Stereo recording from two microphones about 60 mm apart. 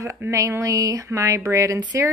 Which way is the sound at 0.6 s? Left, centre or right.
Right.